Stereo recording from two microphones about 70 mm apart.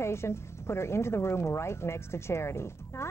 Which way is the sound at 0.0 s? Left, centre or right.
Left.